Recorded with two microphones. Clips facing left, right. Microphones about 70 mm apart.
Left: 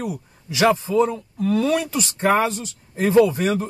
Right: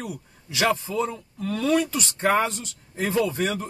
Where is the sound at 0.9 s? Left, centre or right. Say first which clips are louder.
Left 8 dB; left.